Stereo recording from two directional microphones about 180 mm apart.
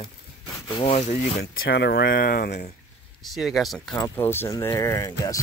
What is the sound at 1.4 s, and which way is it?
Speech, 80° left.